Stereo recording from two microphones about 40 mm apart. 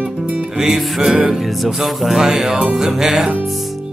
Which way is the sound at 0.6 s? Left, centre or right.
Centre.